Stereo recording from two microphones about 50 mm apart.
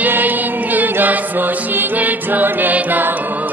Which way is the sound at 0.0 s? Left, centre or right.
Right.